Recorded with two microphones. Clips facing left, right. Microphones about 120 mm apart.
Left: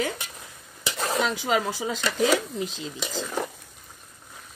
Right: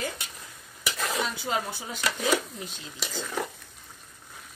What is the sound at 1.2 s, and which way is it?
Speech, 90° left.